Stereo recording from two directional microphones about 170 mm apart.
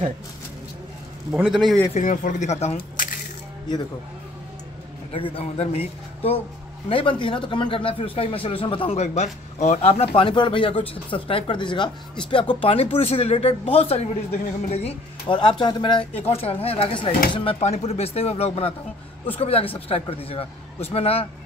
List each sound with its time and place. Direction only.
1.3 s a man's voice: centre (ahead or behind)
2.0 s speech: 45° left (ahead or behind)
5.1 s a man's voice: 35° left (ahead or behind)